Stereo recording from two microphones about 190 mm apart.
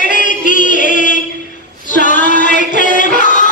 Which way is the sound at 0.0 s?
45° left (ahead or behind).